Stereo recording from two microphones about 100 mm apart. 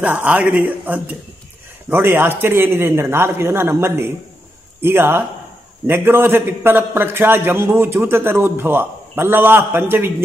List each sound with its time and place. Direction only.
0.0 s a man's voice: 15° right (ahead or behind)